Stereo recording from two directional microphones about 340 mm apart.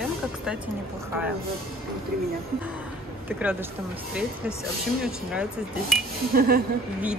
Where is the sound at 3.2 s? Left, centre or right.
Centre.